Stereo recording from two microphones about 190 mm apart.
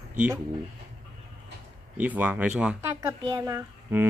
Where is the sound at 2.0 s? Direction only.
10° right (ahead or behind).